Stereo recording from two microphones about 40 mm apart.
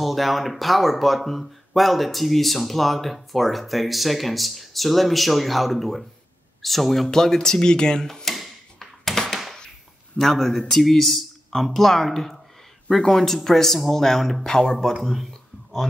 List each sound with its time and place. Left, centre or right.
0.0 s speech: centre
7.1 s speech: centre
8.3 s a sound: centre
10.1 s speech: right
10.7 s speech: centre